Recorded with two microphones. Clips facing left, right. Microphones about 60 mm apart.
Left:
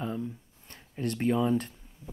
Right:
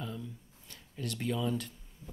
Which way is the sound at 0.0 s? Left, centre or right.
Left.